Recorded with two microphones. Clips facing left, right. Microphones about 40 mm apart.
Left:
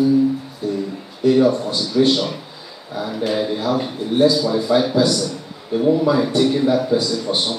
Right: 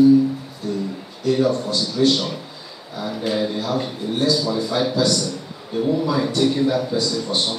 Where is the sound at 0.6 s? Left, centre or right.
Centre.